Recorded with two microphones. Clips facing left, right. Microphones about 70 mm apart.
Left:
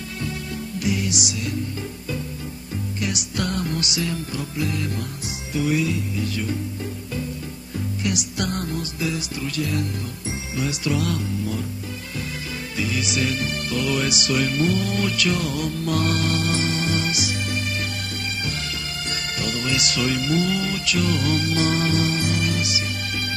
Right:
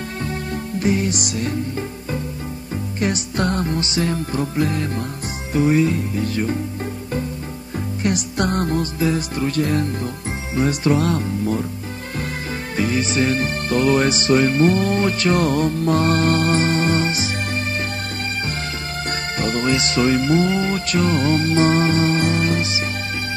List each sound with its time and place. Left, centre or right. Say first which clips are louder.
0.7 s music: right 5 dB; right
3.0 s music: right 6 dB; right
8.0 s music: right 6 dB; right
12.7 s music: right 6 dB; right
19.0 s music: right 6 dB; right